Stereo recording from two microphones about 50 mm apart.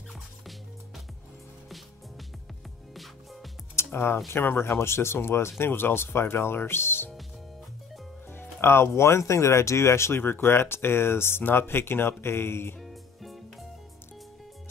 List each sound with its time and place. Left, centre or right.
0.1 s music: centre
3.7 s music: left
4.3 s speech: left
5.6 s speech: left
8.3 s speech: left
12.8 s music: centre